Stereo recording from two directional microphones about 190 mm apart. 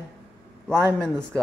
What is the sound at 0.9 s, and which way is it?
Speech, 5° left (ahead or behind).